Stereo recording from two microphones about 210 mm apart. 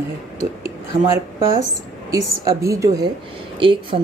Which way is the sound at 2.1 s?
15° right (ahead or behind).